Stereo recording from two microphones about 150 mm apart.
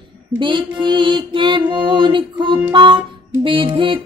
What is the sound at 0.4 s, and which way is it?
Mantra, 35° right (ahead or behind).